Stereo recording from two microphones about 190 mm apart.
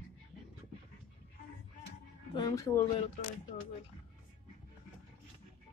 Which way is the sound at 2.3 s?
20° left (ahead or behind).